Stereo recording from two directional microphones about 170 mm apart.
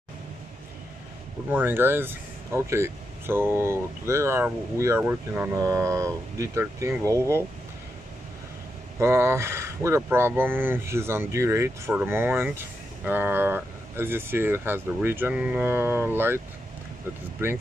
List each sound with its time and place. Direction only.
1.5 s speech: 10° right (ahead or behind)
9.0 s speech: 15° right (ahead or behind)
17.4 s speech: 15° right (ahead or behind)